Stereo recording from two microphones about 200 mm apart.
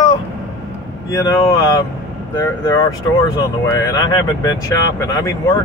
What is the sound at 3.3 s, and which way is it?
Speech, 15° left (ahead or behind).